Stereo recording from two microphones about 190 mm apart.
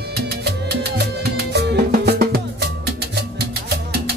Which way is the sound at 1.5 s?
60° right (ahead or behind).